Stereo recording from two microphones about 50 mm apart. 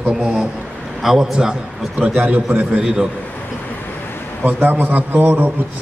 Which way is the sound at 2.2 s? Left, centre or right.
Right.